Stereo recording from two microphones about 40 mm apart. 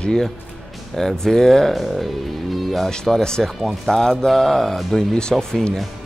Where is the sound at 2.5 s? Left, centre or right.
Centre.